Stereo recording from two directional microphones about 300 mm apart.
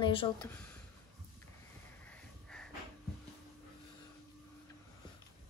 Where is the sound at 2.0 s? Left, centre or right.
Centre.